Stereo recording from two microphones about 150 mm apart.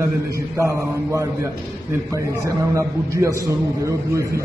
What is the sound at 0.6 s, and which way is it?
A man's voice, 20° right (ahead or behind).